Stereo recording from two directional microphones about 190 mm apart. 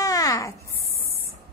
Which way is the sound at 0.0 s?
20° left (ahead or behind).